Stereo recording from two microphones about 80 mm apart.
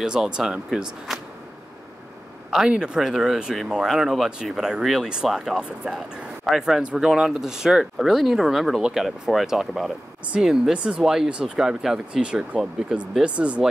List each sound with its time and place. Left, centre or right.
0.0 s speech: centre
2.5 s speech: centre